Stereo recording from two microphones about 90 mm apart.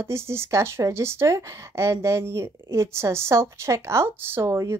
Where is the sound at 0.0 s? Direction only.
30° right (ahead or behind).